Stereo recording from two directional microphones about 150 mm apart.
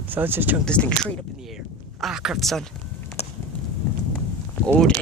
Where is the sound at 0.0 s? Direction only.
15° right (ahead or behind).